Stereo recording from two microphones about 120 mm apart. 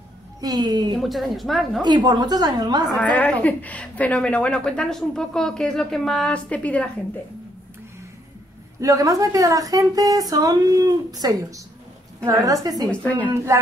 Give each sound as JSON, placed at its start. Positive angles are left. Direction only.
{"t": 0.4, "sound": "a woman's voice", "side_deg": -35}
{"t": 0.9, "sound": "a woman's voice", "side_deg": 0}
{"t": 1.8, "sound": "a woman's voice", "side_deg": -40}
{"t": 3.0, "sound": "speech", "side_deg": 10}
{"t": 8.8, "sound": "speech", "side_deg": -30}
{"t": 13.0, "sound": "speech", "side_deg": 10}
{"t": 13.5, "sound": "speech", "side_deg": -25}